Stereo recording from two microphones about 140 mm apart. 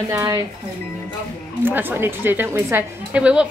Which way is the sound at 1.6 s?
15° right (ahead or behind).